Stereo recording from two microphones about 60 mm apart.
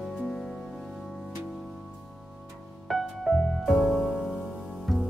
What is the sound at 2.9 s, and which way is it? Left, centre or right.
Music, centre.